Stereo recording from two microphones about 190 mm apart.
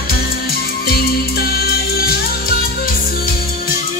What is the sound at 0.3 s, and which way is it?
Music, 55° left (ahead or behind).